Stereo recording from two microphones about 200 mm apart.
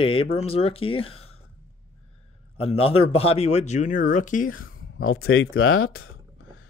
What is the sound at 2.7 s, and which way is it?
Speech, 30° left (ahead or behind).